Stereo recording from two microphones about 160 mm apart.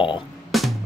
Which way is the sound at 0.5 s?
Centre (ahead or behind).